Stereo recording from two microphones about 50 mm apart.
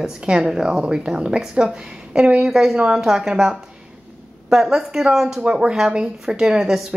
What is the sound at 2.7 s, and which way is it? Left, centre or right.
A woman's voice, right.